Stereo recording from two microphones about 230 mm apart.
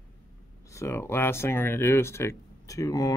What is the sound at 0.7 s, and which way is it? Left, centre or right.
Speech, centre.